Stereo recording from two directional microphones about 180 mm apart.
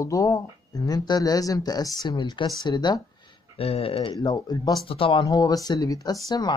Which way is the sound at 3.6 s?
30° left (ahead or behind).